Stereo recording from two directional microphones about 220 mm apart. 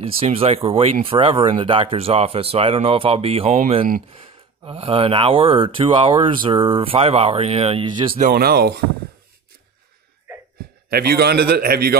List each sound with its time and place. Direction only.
0.0 s speech: 25° right (ahead or behind)
8.2 s a man's voice: 45° right (ahead or behind)
10.9 s a man's voice: 45° right (ahead or behind)